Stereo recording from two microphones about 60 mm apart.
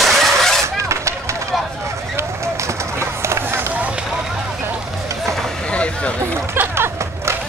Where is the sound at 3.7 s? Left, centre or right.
Right.